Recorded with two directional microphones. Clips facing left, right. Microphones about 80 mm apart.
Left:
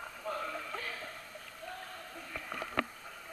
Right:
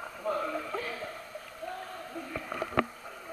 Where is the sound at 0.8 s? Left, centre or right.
Right.